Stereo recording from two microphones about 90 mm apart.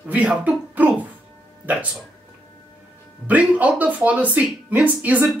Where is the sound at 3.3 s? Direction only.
15° right (ahead or behind).